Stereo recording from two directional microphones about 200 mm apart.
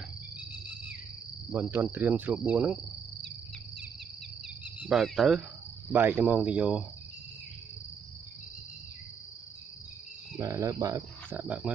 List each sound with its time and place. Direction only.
1.5 s cricket: 10° right (ahead or behind)
4.8 s speech: centre (ahead or behind)
5.9 s cricket: 10° right (ahead or behind)
10.3 s cricket: 15° right (ahead or behind)
11.3 s cricket: 5° right (ahead or behind)